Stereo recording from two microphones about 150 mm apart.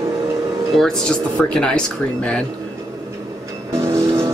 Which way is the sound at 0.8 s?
5° left (ahead or behind).